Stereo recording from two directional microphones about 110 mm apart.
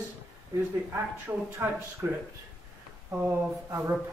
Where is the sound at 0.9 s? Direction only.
20° right (ahead or behind).